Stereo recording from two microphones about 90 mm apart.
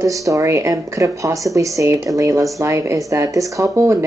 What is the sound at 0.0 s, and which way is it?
Speech, 35° right (ahead or behind).